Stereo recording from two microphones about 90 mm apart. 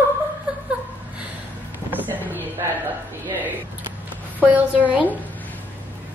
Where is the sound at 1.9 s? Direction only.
20° right (ahead or behind).